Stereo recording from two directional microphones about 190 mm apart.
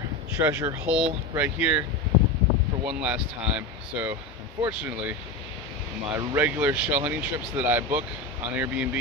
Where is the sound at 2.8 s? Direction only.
5° right (ahead or behind).